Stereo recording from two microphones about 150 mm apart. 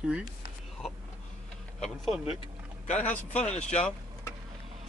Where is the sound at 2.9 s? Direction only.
50° left (ahead or behind).